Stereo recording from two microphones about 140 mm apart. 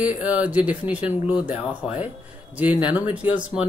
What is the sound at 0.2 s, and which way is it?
Speech, 10° right (ahead or behind).